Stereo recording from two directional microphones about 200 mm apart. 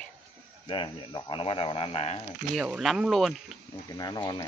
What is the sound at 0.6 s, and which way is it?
Speech, 25° left (ahead or behind).